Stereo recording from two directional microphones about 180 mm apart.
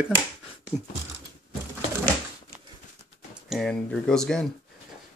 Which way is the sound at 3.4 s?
Centre (ahead or behind).